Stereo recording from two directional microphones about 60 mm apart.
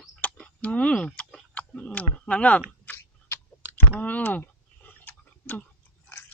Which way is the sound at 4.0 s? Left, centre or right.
Left.